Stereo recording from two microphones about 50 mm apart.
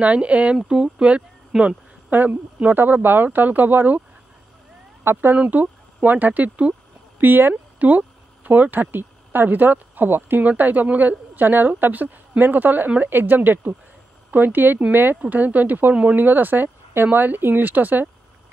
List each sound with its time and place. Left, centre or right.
0.0 s speech: right
1.5 s speech: centre
2.0 s a woman's voice: right
5.0 s a woman's voice: right
7.2 s speech: right
10.4 s a woman's voice: right